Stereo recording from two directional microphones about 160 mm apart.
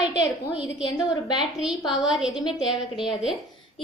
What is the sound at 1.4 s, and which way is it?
A woman's voice, 5° right (ahead or behind).